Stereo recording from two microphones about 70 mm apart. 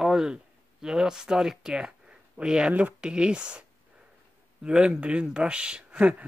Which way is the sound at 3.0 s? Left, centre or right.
Centre.